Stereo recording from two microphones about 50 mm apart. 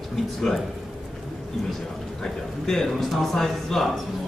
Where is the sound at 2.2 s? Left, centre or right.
Centre.